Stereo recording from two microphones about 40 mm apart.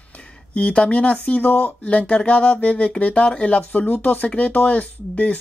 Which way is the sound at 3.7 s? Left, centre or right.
Left.